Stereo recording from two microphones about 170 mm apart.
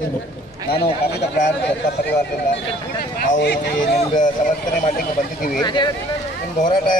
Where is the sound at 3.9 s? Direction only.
50° left (ahead or behind).